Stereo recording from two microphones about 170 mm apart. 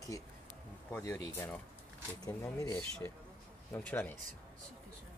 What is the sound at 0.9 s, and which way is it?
Speech, 15° left (ahead or behind).